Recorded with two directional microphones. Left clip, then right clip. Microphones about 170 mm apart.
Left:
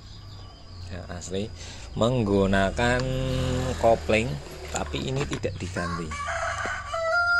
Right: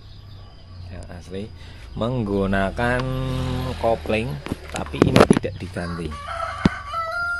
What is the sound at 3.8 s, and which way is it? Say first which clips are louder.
Speech: even; 10° right (ahead or behind).